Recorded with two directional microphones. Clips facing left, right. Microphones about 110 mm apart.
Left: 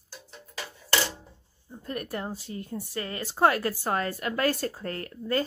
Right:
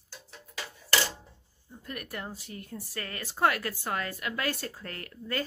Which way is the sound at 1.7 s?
35° left (ahead or behind).